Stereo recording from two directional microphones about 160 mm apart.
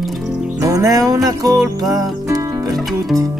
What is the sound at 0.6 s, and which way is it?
Music, 20° right (ahead or behind).